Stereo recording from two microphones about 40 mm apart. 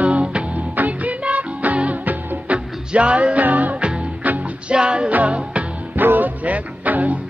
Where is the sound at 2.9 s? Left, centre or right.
Right.